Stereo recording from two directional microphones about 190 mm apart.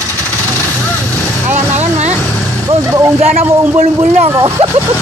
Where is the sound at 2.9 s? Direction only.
15° right (ahead or behind).